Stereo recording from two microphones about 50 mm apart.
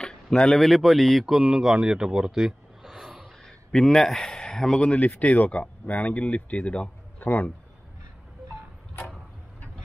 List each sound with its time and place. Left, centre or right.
0.0 s speech: centre
1.5 s speech: centre
3.4 s a man's voice: centre; by 7.5 s left